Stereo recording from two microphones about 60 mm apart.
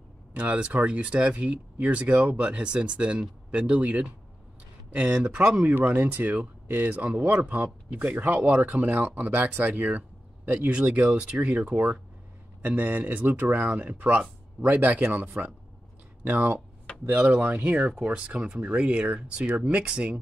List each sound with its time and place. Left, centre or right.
0.3 s speech: right
5.4 s speech: centre
5.7 s speech: right